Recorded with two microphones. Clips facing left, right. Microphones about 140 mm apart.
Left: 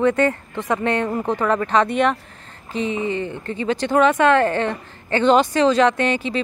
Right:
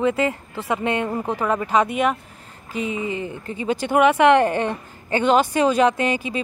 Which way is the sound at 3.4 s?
10° right (ahead or behind).